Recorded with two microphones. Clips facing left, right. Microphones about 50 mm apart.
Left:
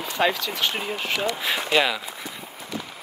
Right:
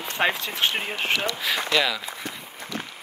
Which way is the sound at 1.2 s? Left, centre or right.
Left.